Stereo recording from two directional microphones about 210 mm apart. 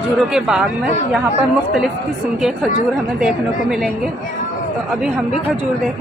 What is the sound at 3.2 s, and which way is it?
Speech, centre (ahead or behind).